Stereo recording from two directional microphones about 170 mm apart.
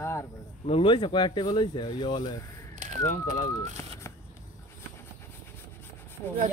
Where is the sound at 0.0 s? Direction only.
15° left (ahead or behind).